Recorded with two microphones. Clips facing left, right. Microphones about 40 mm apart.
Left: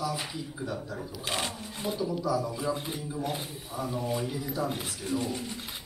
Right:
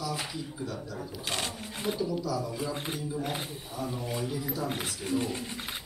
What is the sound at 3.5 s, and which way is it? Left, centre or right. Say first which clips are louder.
Speech: left 1 dB; centre.